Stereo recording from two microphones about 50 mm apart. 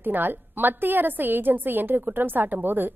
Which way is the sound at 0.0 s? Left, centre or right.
Right.